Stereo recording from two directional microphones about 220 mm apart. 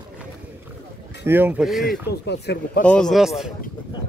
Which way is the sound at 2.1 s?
50° left (ahead or behind).